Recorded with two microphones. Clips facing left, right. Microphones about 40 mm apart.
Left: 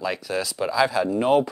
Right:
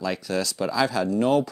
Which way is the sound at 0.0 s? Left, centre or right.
Centre.